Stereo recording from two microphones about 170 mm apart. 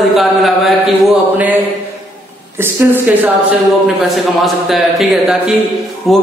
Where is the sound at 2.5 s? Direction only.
10° right (ahead or behind).